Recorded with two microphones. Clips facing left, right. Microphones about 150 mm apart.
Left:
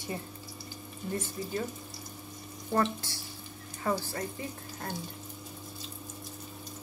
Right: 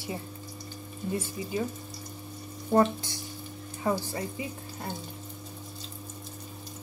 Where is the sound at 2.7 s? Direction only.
20° right (ahead or behind).